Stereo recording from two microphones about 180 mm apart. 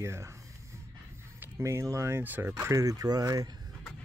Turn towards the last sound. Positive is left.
turn(degrees=-20)  # may be behind; listen again after turning